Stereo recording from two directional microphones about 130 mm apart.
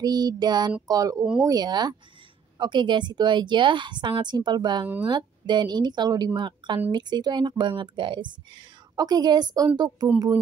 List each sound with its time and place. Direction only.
0.0 s a woman's voice: 30° right (ahead or behind)